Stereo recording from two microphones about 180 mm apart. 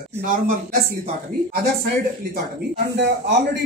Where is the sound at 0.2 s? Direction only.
50° right (ahead or behind).